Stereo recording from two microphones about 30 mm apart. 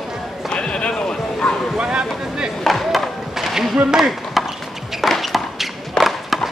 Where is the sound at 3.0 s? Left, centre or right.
Centre.